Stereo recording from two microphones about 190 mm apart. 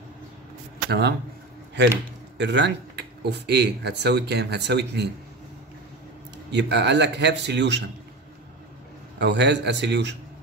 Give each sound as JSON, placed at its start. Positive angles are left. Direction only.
{"t": 0.8, "sound": "a man's voice", "side_deg": -60}
{"t": 2.3, "sound": "speech", "side_deg": -65}
{"t": 6.5, "sound": "speech", "side_deg": -65}
{"t": 9.2, "sound": "speech", "side_deg": -65}